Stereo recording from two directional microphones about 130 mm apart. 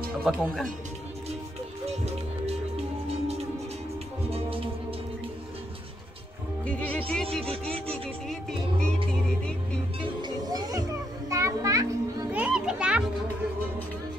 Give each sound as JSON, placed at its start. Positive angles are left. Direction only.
{"t": 0.2, "sound": "speech", "side_deg": 0}
{"t": 1.9, "sound": "music", "side_deg": -55}
{"t": 4.3, "sound": "music", "side_deg": -45}
{"t": 6.6, "sound": "music", "side_deg": 10}
{"t": 9.9, "sound": "a child's voice", "side_deg": -30}
{"t": 12.3, "sound": "a child's voice", "side_deg": -10}